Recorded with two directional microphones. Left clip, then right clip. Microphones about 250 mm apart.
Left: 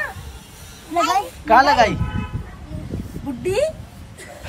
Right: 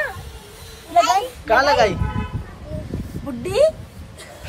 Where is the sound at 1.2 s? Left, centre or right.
Centre.